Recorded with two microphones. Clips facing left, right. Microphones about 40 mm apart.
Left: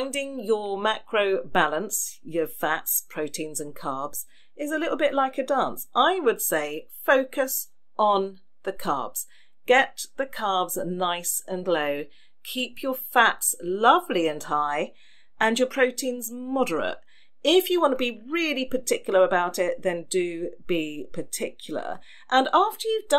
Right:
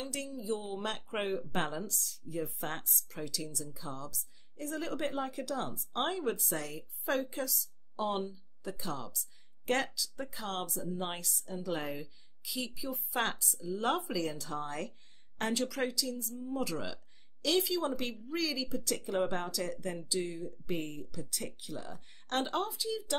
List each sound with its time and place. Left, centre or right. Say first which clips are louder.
0.0 s speech: left 10 dB; left